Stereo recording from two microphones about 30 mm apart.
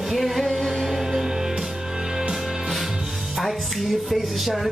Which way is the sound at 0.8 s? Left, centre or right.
Centre.